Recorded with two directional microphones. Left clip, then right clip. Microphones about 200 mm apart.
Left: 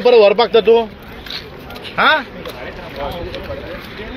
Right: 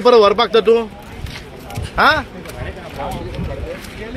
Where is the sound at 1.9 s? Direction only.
10° right (ahead or behind).